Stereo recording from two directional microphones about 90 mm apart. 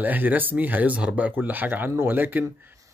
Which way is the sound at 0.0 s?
20° right (ahead or behind).